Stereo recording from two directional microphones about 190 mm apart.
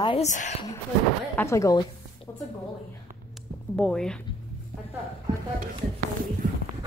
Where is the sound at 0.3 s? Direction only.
40° left (ahead or behind).